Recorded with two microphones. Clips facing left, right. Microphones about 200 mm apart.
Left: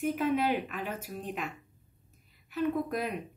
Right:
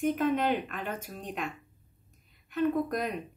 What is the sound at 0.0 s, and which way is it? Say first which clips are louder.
A woman's voice: right 1 dB; 5° left (ahead or behind).